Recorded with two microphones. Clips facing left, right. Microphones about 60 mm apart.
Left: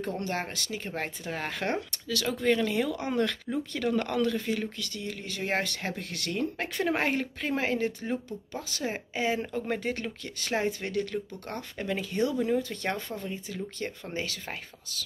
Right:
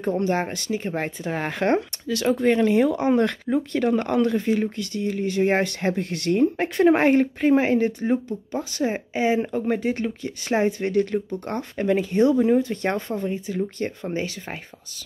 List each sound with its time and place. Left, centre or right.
0.0 s speech: right
3.4 s speech: right
3.8 s speech: right